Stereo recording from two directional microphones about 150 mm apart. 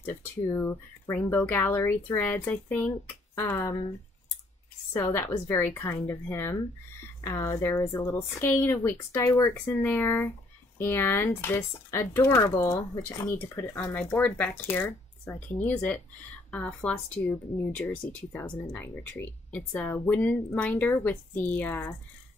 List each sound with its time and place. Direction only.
0.0 s speech: 20° left (ahead or behind)
4.9 s speech: 15° left (ahead or behind)